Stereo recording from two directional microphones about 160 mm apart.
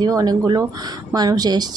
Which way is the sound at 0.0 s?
25° right (ahead or behind).